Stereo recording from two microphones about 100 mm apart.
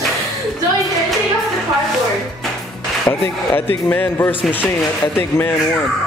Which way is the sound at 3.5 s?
20° left (ahead or behind).